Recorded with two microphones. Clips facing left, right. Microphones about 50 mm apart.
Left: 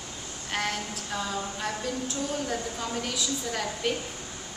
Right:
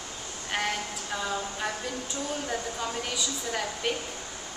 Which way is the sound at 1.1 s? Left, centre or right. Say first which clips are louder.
Even; centre.